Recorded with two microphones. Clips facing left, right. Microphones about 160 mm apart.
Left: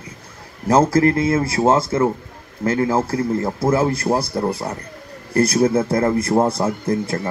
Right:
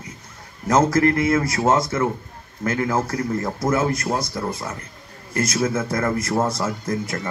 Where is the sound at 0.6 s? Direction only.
30° left (ahead or behind).